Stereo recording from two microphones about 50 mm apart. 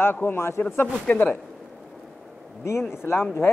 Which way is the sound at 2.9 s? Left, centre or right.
Left.